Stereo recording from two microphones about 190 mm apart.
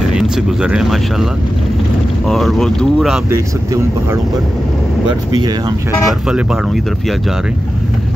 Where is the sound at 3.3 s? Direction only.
15° right (ahead or behind).